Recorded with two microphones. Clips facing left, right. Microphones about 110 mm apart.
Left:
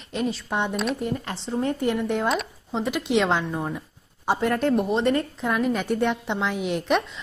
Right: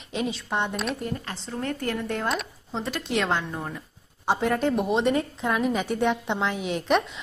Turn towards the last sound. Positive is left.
turn(degrees=0)  # may be behind; listen again after turning